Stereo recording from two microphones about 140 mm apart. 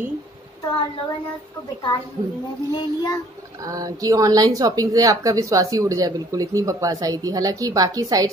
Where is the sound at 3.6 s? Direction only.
25° right (ahead or behind).